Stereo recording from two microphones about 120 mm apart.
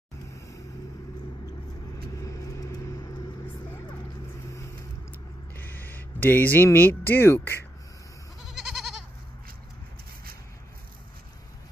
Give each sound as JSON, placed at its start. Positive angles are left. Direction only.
{"t": 2.2, "sound": "vehicle", "side_deg": 30}
{"t": 5.6, "sound": "speech", "side_deg": 15}
{"t": 8.5, "sound": "goat", "side_deg": 0}